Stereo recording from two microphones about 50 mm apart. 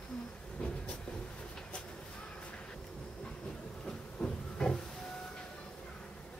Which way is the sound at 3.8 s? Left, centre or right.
Centre.